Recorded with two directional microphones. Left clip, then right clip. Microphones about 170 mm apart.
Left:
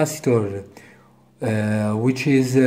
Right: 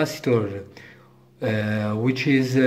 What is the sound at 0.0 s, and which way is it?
Speech, 15° left (ahead or behind).